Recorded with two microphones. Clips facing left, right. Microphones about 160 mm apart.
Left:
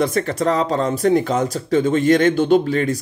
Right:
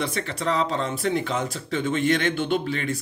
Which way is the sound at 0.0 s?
45° left (ahead or behind).